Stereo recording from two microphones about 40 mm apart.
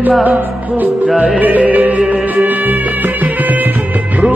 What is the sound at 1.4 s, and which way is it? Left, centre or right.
Music, right.